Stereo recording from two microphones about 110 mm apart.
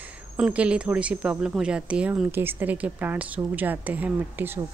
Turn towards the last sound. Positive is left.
turn(degrees=-20)  # may be behind; listen again after turning